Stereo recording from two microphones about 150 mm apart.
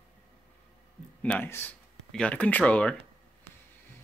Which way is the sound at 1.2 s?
10° left (ahead or behind).